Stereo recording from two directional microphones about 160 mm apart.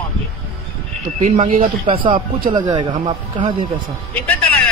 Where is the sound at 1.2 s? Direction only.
50° right (ahead or behind).